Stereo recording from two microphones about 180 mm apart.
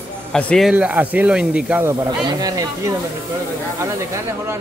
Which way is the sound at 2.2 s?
20° right (ahead or behind).